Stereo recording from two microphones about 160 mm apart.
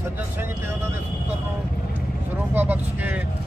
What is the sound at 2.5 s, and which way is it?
Speech, 10° right (ahead or behind).